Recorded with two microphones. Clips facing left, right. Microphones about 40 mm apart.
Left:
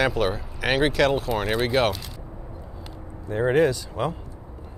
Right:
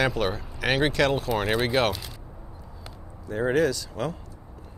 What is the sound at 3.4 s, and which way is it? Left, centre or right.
Speech, left.